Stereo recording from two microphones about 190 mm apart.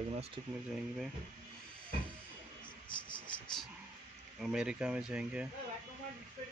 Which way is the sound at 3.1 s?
25° left (ahead or behind).